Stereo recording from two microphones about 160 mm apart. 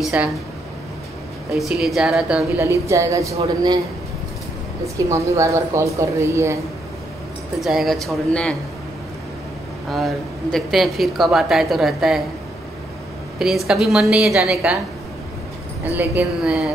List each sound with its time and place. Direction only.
0.0 s speech: 5° right (ahead or behind)
1.5 s speech: centre (ahead or behind)
2.6 s speech: 20° right (ahead or behind)
4.9 s speech: 20° right (ahead or behind)
7.6 s speech: centre (ahead or behind)
9.8 s speech: centre (ahead or behind)
13.4 s speech: centre (ahead or behind)
15.9 s a woman's voice: 15° right (ahead or behind)